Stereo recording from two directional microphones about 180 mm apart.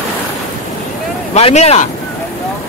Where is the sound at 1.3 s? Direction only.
35° left (ahead or behind).